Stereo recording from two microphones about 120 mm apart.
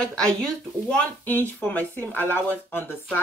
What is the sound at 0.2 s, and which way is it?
A woman's voice, 5° left (ahead or behind).